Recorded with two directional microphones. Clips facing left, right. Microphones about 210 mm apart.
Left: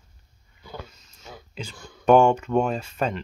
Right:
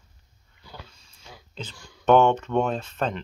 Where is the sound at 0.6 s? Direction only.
50° left (ahead or behind).